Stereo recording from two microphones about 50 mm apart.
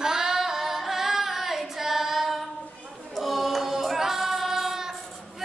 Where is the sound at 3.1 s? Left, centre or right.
Centre.